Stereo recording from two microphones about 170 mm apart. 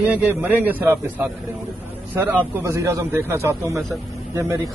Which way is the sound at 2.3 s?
10° right (ahead or behind).